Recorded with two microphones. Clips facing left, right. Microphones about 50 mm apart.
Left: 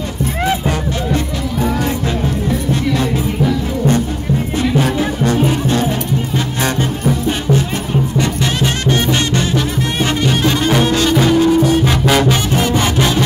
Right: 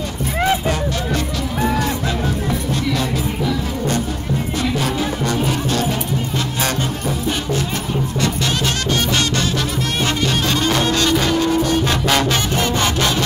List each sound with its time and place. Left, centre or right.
0.4 s music: centre
4.7 s music: left
8.9 s music: left